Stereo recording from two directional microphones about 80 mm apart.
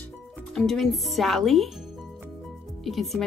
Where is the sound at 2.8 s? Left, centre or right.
Centre.